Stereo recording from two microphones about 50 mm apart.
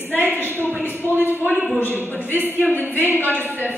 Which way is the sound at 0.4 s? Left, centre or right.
Left.